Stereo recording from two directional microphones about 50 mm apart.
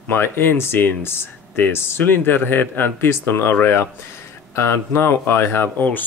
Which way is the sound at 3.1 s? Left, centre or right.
Left.